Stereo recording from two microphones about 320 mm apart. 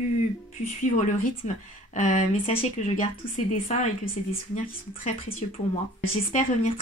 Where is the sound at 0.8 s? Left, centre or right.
Left.